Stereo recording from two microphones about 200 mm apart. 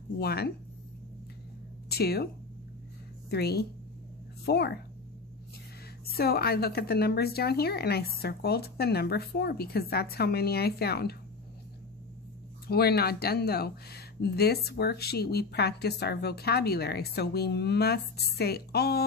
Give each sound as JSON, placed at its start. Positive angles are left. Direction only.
{"t": 0.2, "sound": "speech", "side_deg": 50}
{"t": 1.9, "sound": "speech", "side_deg": 50}
{"t": 3.3, "sound": "speech", "side_deg": 55}
{"t": 6.1, "sound": "speech", "side_deg": 50}
{"t": 12.6, "sound": "speech", "side_deg": 50}